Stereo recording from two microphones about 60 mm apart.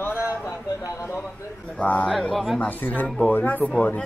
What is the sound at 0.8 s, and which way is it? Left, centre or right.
Speech, left.